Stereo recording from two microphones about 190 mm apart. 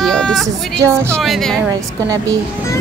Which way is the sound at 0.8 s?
15° right (ahead or behind).